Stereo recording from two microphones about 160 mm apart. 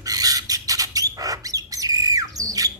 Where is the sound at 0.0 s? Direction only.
25° right (ahead or behind).